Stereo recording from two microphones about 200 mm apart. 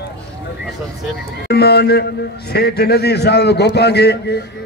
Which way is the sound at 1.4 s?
55° left (ahead or behind).